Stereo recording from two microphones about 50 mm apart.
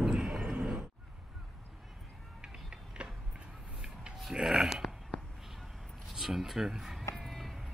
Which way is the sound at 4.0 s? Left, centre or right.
Centre.